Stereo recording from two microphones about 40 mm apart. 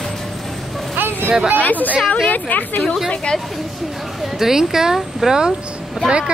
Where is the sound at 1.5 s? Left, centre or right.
Left.